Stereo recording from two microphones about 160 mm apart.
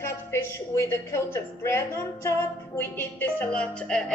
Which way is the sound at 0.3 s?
15° left (ahead or behind).